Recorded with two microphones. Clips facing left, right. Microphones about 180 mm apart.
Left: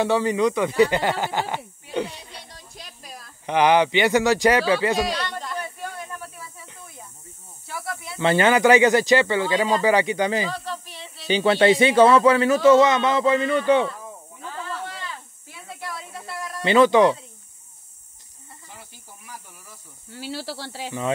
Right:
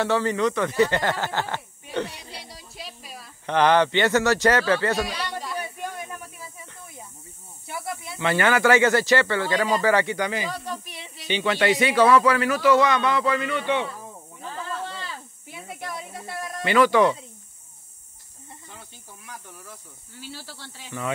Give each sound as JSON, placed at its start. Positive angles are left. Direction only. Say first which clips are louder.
{"t": 0.0, "sound": "speech", "louder": "left 2 dB", "side_deg": 15}
{"t": 2.3, "sound": "music", "louder": "right 2 dB", "side_deg": -10}
{"t": 3.4, "sound": "speech", "louder": "left 1 dB", "side_deg": 10}
{"t": 5.1, "sound": "music", "louder": "left 2 dB", "side_deg": -10}
{"t": 7.6, "sound": "snake", "louder": "even", "side_deg": -20}
{"t": 8.2, "sound": "speech", "louder": "left 3 dB", "side_deg": 25}
{"t": 10.2, "sound": "speech", "louder": "left 4 dB", "side_deg": 30}
{"t": 10.5, "sound": "snake", "louder": "left 1 dB", "side_deg": -15}
{"t": 11.2, "sound": "a man's voice", "louder": "left 5 dB", "side_deg": 35}
{"t": 14.4, "sound": "snake", "louder": "even", "side_deg": -30}
{"t": 16.6, "sound": "a man's voice", "louder": "left 3 dB", "side_deg": 25}
{"t": 20.2, "sound": "speech", "louder": "left 9 dB", "side_deg": 80}